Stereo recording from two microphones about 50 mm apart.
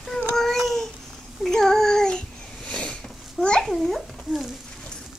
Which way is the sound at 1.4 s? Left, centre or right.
Centre.